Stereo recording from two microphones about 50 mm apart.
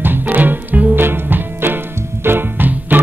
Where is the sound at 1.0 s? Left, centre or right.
Right.